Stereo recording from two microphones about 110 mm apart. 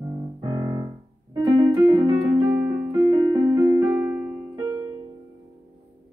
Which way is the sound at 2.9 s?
40° right (ahead or behind).